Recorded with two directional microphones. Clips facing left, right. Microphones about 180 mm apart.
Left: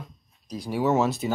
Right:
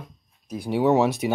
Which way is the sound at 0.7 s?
15° right (ahead or behind).